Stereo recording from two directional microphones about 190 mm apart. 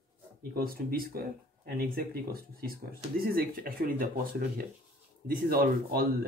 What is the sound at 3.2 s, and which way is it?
Speech, 50° right (ahead or behind).